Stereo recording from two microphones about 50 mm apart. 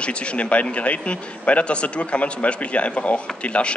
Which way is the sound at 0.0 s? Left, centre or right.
Left.